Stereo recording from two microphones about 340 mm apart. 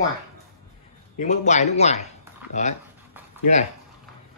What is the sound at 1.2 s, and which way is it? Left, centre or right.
Speech, left.